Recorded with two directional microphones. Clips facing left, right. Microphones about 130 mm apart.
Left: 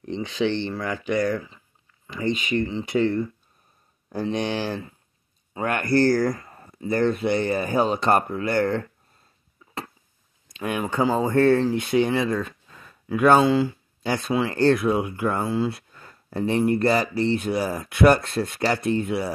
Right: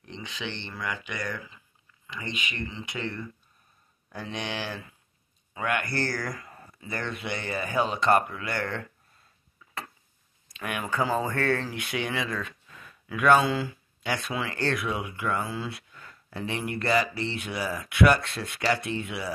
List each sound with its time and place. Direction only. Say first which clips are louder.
0.0 s speech: left 13 dB; 35° left (ahead or behind)
10.5 s speech: left 5 dB; 25° left (ahead or behind); by 19.3 s 40° left (ahead or behind)